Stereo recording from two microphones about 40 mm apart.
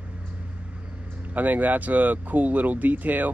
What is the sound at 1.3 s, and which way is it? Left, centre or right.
Speech, right.